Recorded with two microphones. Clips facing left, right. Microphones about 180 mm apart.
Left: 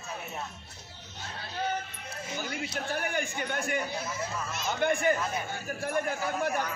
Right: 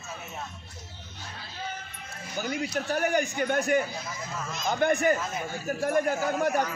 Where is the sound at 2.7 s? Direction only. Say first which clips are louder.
Right 6 dB; 40° right (ahead or behind).